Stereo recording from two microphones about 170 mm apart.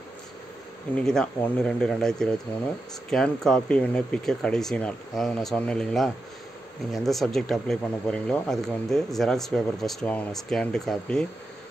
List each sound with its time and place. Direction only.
0.9 s speech: 5° left (ahead or behind)